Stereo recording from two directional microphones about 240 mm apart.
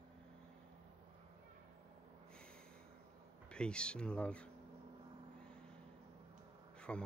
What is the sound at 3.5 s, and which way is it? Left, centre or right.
Speech, centre.